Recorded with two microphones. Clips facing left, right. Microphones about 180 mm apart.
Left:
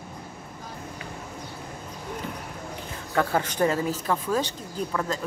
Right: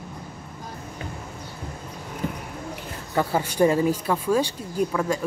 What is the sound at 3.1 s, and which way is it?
A woman's voice, 10° right (ahead or behind).